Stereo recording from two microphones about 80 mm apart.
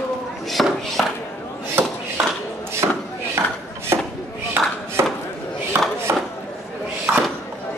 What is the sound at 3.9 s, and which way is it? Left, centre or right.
Chop, right.